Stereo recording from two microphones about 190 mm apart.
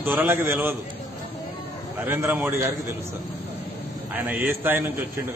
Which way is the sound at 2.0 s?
10° right (ahead or behind).